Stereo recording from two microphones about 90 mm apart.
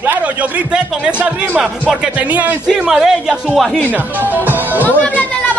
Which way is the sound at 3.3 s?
5° left (ahead or behind).